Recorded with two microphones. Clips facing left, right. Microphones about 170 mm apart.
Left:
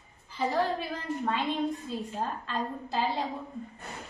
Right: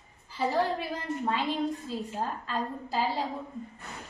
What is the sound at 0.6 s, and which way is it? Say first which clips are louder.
A child's voice: even; 10° right (ahead or behind).